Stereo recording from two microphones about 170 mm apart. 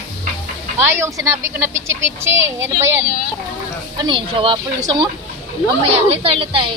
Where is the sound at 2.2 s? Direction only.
15° right (ahead or behind).